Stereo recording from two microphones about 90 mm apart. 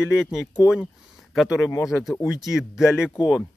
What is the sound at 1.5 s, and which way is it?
Speech, 30° left (ahead or behind).